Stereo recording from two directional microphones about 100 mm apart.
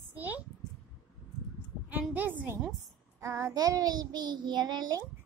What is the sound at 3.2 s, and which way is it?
A child's voice, 30° right (ahead or behind).